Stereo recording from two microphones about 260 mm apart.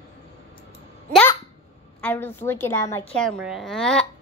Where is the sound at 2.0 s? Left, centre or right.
Centre.